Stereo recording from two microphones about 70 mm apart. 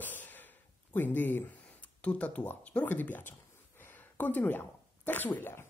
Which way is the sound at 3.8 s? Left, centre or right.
Left.